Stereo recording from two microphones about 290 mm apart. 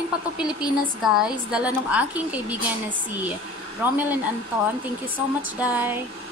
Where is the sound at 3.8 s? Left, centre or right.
Centre.